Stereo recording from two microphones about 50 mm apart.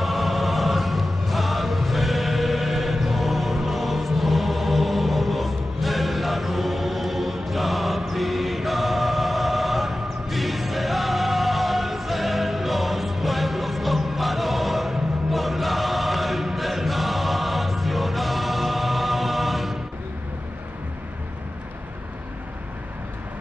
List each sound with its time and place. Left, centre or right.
0.0 s music: centre